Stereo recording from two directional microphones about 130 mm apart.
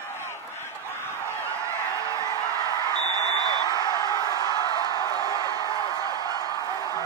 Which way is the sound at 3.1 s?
30° left (ahead or behind).